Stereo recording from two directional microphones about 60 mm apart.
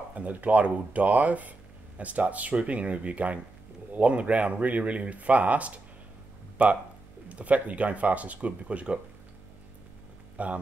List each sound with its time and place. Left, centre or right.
0.1 s speech: right
10.3 s speech: right